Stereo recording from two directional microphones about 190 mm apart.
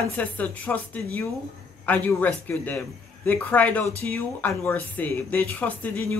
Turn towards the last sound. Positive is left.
turn(degrees=10)  # may be behind; listen again after turning